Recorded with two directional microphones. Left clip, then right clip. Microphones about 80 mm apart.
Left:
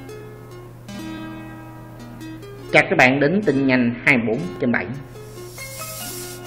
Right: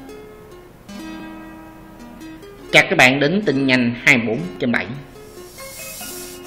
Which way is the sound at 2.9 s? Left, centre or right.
Centre.